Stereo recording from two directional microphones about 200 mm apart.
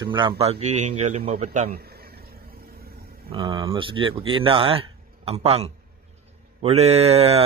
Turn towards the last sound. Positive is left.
turn(degrees=-30)  # may be behind; listen again after turning